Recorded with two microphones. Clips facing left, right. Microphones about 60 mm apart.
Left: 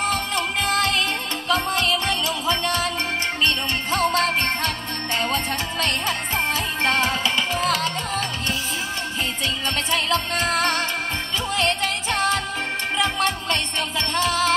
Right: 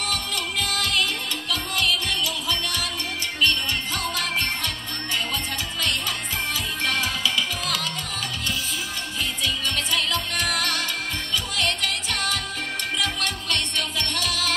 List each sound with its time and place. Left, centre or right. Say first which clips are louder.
0.1 s music: left 5 dB; left
9.8 s music: left 6 dB; left